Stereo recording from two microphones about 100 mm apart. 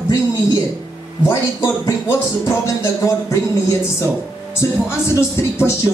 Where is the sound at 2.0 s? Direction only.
30° left (ahead or behind).